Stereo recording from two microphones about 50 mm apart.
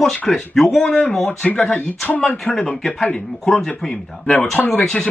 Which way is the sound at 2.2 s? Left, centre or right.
Centre.